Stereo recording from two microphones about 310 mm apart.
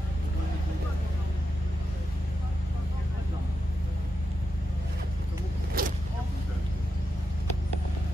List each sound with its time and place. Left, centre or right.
5.8 s vehicle: right